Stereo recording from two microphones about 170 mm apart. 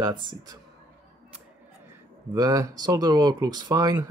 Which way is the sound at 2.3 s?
20° right (ahead or behind).